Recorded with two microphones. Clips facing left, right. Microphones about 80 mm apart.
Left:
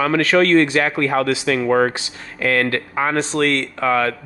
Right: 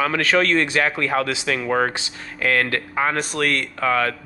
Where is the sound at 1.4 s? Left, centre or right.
Left.